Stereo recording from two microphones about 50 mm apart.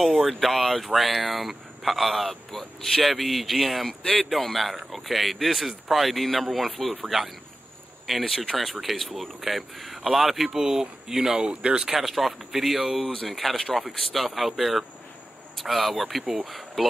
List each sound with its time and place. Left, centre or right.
0.3 s speech: centre
13.0 s speech: centre
13.3 s speech: centre